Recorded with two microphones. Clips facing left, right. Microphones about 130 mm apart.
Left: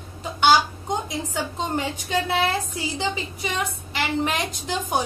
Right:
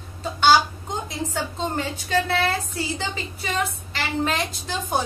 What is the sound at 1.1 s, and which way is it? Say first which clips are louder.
A woman's voice: even; 15° left (ahead or behind).